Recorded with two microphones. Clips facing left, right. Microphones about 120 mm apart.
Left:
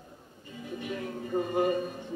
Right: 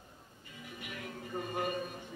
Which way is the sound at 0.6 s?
30° left (ahead or behind).